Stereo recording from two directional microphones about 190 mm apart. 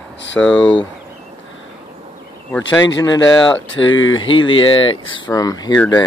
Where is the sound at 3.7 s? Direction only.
90° left.